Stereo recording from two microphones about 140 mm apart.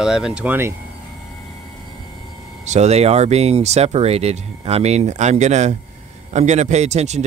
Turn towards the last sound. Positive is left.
turn(degrees=-55)  # may be behind; listen again after turning